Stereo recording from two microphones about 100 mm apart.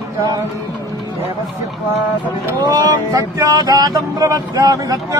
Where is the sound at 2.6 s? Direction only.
35° right (ahead or behind).